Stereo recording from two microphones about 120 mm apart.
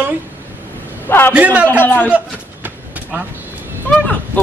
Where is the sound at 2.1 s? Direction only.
15° right (ahead or behind).